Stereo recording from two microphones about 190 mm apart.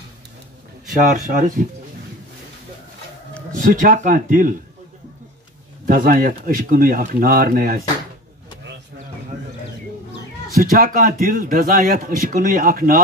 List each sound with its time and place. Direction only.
1.3 s speech: 45° right (ahead or behind)
3.5 s speech: 45° right (ahead or behind)
5.9 s speech: 45° right (ahead or behind)
10.5 s speech: 50° right (ahead or behind)